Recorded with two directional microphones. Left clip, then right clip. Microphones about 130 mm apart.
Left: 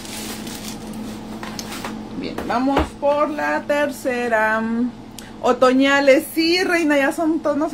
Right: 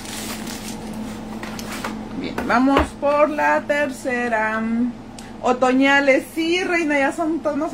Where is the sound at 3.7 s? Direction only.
30° left (ahead or behind).